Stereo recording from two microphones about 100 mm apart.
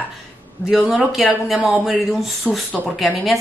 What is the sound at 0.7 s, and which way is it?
A woman's voice, centre (ahead or behind).